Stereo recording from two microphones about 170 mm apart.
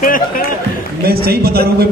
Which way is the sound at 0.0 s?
55° left (ahead or behind).